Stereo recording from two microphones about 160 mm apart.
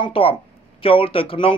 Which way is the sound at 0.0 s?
35° left (ahead or behind).